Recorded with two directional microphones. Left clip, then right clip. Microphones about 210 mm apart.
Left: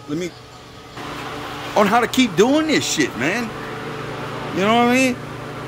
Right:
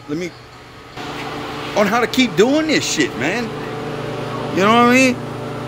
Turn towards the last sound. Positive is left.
turn(degrees=5)  # may be behind; listen again after turning